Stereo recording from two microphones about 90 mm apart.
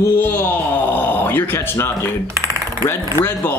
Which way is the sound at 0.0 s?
25° left (ahead or behind).